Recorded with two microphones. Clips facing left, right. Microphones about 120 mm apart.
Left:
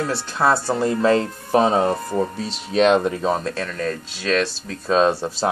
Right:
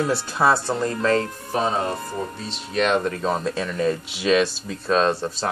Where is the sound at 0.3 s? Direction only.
5° right (ahead or behind).